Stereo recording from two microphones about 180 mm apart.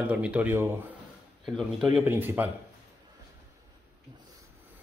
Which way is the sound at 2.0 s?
10° right (ahead or behind).